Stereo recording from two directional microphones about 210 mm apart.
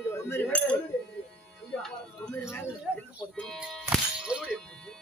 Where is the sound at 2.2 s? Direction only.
5° left (ahead or behind).